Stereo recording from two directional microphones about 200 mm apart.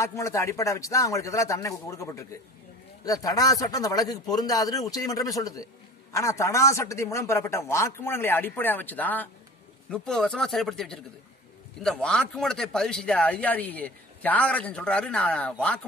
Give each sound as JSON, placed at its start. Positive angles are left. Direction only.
{"t": 0.0, "sound": "speech", "side_deg": 15}